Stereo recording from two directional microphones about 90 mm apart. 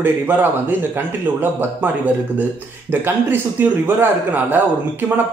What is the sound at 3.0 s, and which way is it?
Speech, 25° right (ahead or behind).